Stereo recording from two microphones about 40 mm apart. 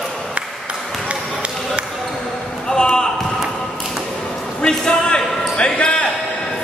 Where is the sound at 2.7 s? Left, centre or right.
Centre.